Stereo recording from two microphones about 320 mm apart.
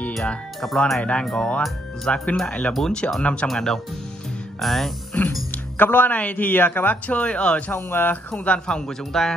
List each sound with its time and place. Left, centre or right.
0.0 s speech: centre